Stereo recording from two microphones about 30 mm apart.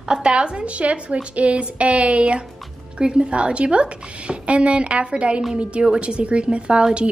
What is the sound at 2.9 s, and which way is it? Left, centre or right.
Speech, right.